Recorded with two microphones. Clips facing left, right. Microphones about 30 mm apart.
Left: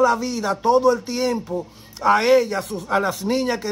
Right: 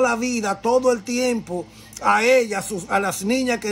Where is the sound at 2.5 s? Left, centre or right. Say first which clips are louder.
Even; left.